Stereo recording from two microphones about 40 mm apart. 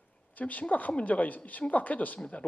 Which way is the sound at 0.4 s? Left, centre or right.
Left.